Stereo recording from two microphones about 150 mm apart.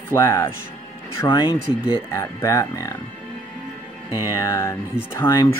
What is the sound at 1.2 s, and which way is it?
Speech, 30° left (ahead or behind).